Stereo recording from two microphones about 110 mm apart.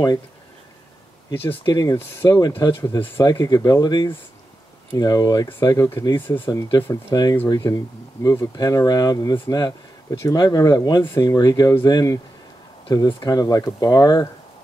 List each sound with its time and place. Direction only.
1.3 s speech: 20° left (ahead or behind)
1.6 s speech: 40° left (ahead or behind)
2.0 s speech: 25° left (ahead or behind)
2.6 s speech: 35° left (ahead or behind)
6.2 s speech: 20° left (ahead or behind)
6.9 s speech: 35° left (ahead or behind)